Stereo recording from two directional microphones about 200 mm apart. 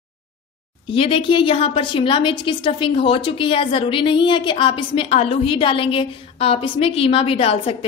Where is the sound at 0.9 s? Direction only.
25° left (ahead or behind).